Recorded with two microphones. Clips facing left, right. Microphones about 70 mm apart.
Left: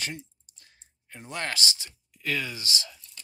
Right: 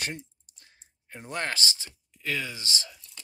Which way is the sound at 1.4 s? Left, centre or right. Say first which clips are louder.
Even; right.